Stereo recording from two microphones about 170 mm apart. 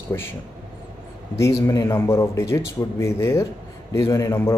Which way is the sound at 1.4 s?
15° left (ahead or behind).